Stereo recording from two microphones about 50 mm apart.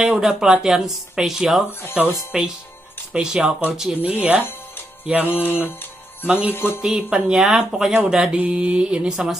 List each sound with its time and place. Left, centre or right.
0.0 s speech: centre
1.7 s mantra: left
2.3 s speech: centre
3.1 s mantra: centre
5.3 s mantra: left
6.2 s mantra: right
6.5 s mantra: left
6.8 s speech: centre
8.4 s mantra: right
9.1 s speech: centre